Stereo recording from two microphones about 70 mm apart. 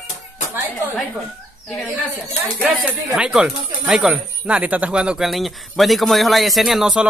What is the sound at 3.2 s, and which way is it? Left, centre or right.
Speech, centre.